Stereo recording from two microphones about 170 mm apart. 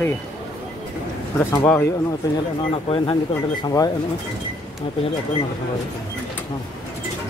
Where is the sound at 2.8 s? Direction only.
30° left (ahead or behind).